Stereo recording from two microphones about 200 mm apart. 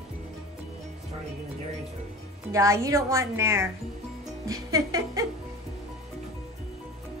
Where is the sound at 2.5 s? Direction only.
15° right (ahead or behind).